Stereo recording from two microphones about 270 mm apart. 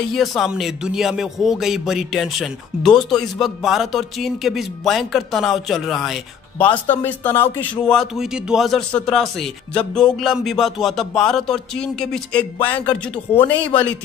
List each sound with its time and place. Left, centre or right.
0.1 s speech: centre